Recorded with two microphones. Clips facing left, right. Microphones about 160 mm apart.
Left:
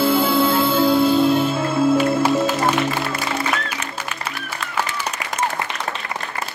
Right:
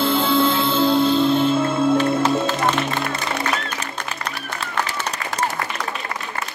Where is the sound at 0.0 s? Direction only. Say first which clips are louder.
Left 1 dB; 10° left (ahead or behind).